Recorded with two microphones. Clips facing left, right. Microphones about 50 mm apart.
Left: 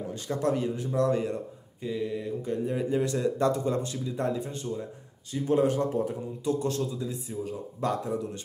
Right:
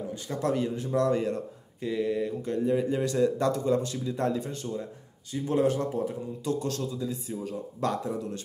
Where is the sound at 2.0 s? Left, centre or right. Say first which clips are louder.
Right 4 dB; centre.